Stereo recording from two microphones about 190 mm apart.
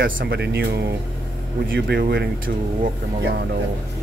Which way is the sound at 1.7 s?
60° right (ahead or behind).